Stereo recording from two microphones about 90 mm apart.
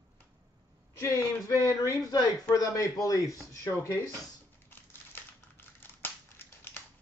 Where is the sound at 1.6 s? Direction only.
40° left (ahead or behind).